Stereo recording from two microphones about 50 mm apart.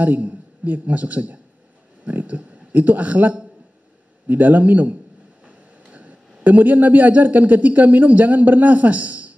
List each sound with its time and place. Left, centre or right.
0.0 s a man's voice: right